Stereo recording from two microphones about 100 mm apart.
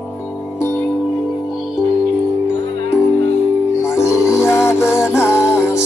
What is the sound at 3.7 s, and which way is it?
Music, 25° left (ahead or behind).